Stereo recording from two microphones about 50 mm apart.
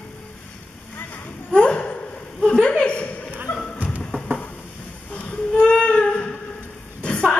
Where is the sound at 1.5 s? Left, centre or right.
Left.